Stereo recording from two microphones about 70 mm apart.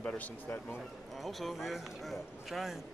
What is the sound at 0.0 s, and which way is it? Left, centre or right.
Speech, centre.